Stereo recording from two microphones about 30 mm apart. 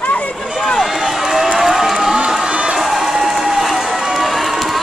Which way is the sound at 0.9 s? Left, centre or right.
Centre.